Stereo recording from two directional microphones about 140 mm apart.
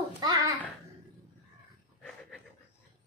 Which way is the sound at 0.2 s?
30° right (ahead or behind).